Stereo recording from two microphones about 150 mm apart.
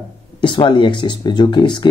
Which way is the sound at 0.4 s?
35° left (ahead or behind).